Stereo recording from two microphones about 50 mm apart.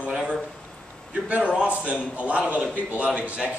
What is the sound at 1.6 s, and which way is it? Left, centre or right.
A man's voice, right.